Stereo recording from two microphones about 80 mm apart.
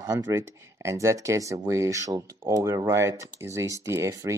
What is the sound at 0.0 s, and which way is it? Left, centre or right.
Speech, right.